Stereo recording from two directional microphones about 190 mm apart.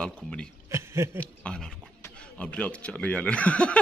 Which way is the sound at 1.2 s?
5° left (ahead or behind).